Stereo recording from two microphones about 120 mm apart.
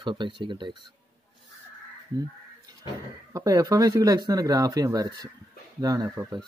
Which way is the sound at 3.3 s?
30° right (ahead or behind).